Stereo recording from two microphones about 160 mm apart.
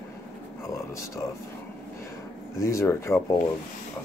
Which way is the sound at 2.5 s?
20° left (ahead or behind).